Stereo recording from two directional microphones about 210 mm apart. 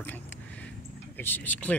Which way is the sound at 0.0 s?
10° left (ahead or behind).